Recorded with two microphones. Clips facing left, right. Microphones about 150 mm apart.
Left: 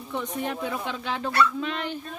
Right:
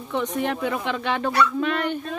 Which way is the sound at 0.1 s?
80° right.